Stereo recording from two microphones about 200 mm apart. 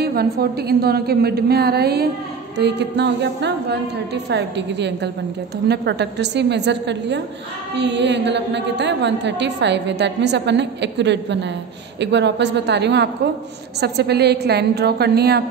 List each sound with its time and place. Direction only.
0.0 s a woman's voice: 50° right (ahead or behind)